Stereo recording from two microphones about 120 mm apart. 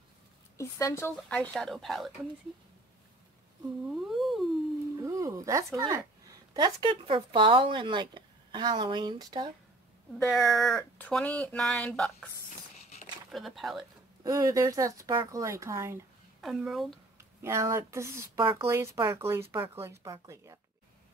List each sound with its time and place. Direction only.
0.6 s speech: 25° left (ahead or behind)
1.1 s speech: 10° left (ahead or behind)
3.9 s a sound: centre (ahead or behind)
5.0 s speech: 25° right (ahead or behind)
6.5 s speech: 40° right (ahead or behind)
10.3 s a woman's voice: centre (ahead or behind)
13.3 s speech: centre (ahead or behind)
14.2 s speech: 30° right (ahead or behind)
16.3 s speech: centre (ahead or behind)
17.2 s speech: 20° right (ahead or behind)
18.4 s speech: 45° right (ahead or behind)
18.7 s speech: 20° right (ahead or behind)